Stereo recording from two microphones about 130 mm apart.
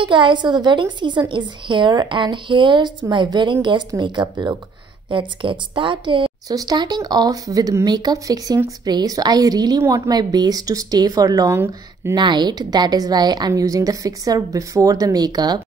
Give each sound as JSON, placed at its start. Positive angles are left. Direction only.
{"t": 0.0, "sound": "a woman's voice", "side_deg": -40}
{"t": 12.2, "sound": "a woman's voice", "side_deg": -35}